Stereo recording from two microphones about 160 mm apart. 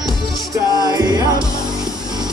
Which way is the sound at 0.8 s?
25° right (ahead or behind).